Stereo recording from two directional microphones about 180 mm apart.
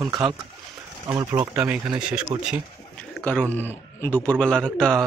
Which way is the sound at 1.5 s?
5° right (ahead or behind).